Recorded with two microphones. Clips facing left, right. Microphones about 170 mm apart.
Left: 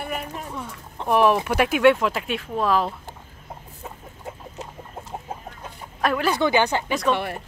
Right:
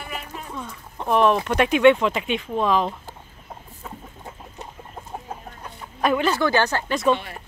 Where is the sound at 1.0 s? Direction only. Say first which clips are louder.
Even; 10° left (ahead or behind).